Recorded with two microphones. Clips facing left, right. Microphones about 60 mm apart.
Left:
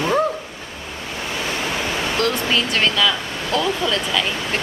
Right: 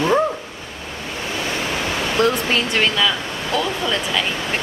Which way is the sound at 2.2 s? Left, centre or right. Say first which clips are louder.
Right 3 dB; centre.